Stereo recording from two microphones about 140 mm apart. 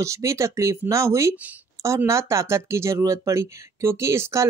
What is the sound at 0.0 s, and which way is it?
Speech, 20° right (ahead or behind).